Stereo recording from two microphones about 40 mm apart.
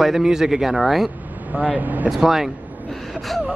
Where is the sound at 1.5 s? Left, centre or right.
Right.